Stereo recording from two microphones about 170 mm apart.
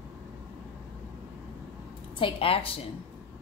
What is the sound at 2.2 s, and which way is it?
Speech, 35° left (ahead or behind).